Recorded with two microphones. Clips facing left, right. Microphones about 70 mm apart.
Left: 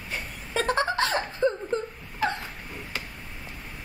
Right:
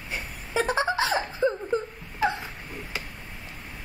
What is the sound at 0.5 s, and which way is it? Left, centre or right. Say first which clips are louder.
Giggle: even; centre.